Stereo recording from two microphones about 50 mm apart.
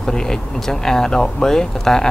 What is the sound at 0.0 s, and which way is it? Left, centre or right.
Speech, centre.